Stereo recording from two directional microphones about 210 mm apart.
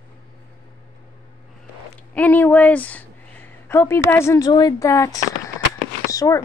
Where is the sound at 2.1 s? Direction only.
10° left (ahead or behind).